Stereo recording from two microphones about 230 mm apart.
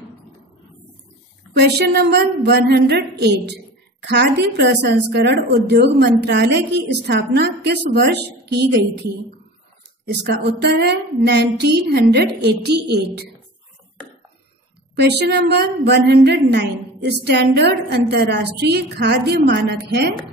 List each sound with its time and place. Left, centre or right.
1.5 s a woman's voice: right
15.0 s a woman's voice: right